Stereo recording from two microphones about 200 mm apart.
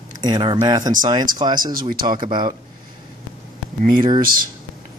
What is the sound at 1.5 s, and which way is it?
Speech, 45° right (ahead or behind).